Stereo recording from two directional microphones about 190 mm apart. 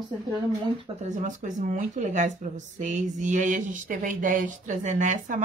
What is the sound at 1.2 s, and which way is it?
Speech, 40° right (ahead or behind).